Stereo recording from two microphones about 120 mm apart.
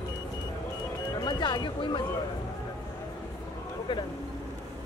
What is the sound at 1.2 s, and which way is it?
Speech, 40° left (ahead or behind).